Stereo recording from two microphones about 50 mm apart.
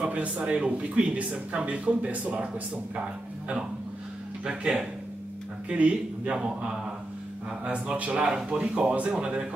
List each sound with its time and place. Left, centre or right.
0.0 s speech: right
5.7 s speech: right